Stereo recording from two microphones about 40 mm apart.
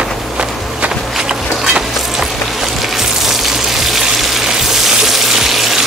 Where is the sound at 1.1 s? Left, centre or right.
Centre.